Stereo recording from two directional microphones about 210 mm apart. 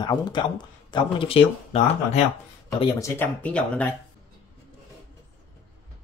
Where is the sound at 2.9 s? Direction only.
10° left (ahead or behind).